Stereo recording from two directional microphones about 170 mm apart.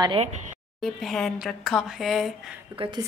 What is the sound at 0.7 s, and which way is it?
Speech, 5° left (ahead or behind).